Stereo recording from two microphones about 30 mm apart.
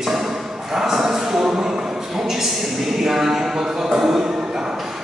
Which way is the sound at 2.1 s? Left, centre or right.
Centre.